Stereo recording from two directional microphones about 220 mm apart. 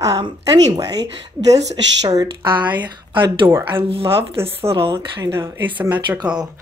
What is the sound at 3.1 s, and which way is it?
A woman's voice, 20° right (ahead or behind).